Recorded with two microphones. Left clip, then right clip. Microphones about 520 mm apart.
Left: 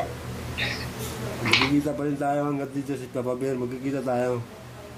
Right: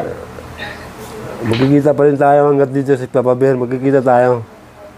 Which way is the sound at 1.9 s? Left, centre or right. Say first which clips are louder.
Right 16 dB; right.